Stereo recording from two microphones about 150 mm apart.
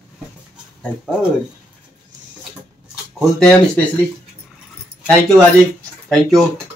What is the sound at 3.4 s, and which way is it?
Speech, 5° left (ahead or behind).